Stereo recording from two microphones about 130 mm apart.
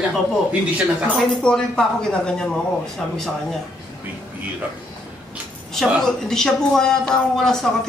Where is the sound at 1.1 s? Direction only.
5° left (ahead or behind).